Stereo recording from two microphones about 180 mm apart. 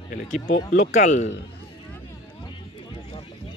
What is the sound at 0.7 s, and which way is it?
Speech, 45° left (ahead or behind).